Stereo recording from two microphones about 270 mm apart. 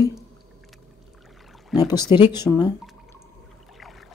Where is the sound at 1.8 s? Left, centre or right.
Centre.